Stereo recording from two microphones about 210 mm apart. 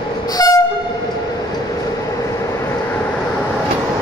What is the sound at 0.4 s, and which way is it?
Train, 20° left (ahead or behind).